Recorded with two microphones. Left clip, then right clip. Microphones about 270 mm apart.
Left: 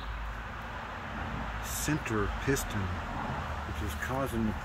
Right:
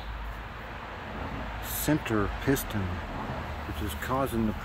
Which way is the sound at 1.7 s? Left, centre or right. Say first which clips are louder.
Right 5 dB; right.